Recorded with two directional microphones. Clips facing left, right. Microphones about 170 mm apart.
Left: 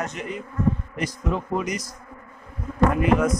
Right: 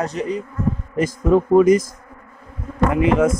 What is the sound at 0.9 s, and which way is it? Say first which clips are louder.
Bee: right 11 dB; 45° right (ahead or behind).